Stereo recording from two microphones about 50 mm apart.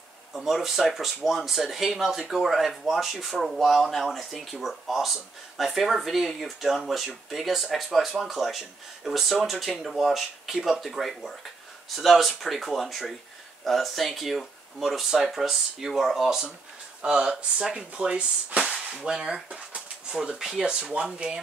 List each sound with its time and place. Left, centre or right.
0.3 s speech: centre
17.9 s speech: right